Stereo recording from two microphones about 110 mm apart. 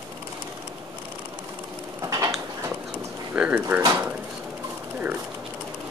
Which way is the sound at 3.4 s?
15° right (ahead or behind).